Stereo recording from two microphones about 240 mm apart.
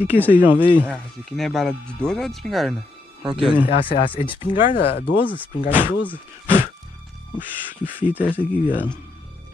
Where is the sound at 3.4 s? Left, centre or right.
Left.